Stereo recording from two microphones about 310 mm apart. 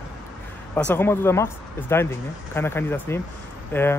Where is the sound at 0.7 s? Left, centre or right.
Centre.